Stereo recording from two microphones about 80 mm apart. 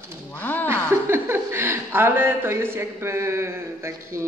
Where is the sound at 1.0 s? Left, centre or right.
Right.